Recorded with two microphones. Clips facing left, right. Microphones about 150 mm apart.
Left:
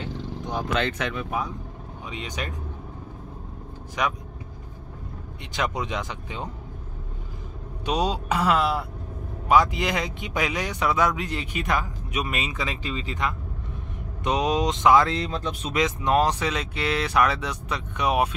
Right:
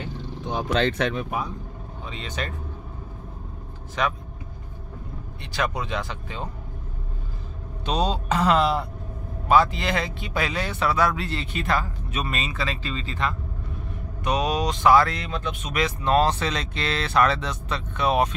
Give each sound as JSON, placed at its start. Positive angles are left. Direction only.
{"t": 0.7, "sound": "speech", "side_deg": -35}
{"t": 2.0, "sound": "speech", "side_deg": 10}
{"t": 4.0, "sound": "speech", "side_deg": 15}
{"t": 5.5, "sound": "speech", "side_deg": 20}
{"t": 7.8, "sound": "speech", "side_deg": 10}
{"t": 15.1, "sound": "speech", "side_deg": 35}
{"t": 15.7, "sound": "speech", "side_deg": 20}